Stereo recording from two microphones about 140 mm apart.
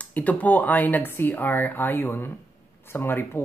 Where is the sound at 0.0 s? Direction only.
10° left (ahead or behind).